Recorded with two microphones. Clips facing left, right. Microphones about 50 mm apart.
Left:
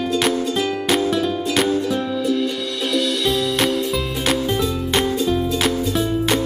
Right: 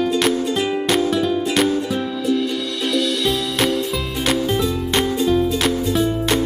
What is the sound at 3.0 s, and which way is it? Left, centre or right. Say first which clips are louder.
Music: left 1 dB; centre.